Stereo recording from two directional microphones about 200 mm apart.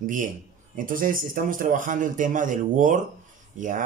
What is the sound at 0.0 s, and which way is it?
Speech, 40° right (ahead or behind).